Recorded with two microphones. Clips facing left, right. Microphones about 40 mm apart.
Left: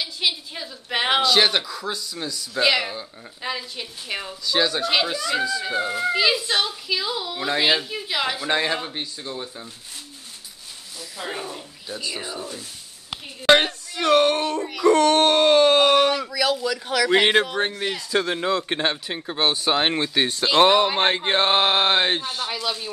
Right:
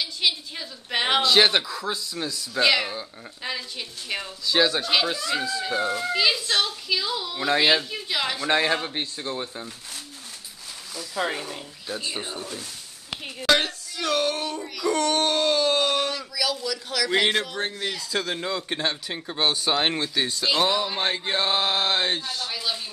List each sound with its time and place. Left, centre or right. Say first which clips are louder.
0.0 s a sound: even; centre
1.2 s speech: even; centre
4.5 s speech: even; centre
8.9 s speech: right 2 dB; centre
12.0 s speech: left 3 dB; right
13.5 s speech: left 5 dB; left
14.6 s speech: left 6 dB; left
14.9 s speech: left 7 dB; left
16.9 s speech: left 5 dB; left
20.2 s speech: left 4 dB; left
20.5 s speech: left 9 dB; left
22.5 s speech: left 2 dB; left